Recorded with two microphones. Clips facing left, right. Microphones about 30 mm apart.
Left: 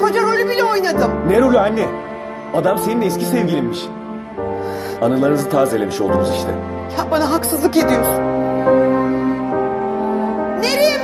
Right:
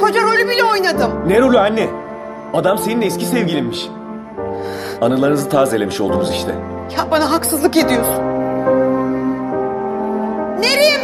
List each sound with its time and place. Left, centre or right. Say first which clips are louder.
0.0 s music: right 2 dB; right
1.2 s speech: right 2 dB; right
5.0 s speech: right 1 dB; right
8.2 s music: even; left
10.6 s music: right 3 dB; right